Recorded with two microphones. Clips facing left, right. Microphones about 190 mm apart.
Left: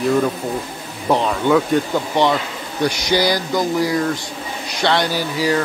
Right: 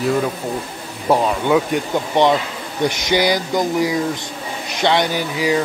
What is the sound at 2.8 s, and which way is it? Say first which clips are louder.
Speech: even; 20° right (ahead or behind).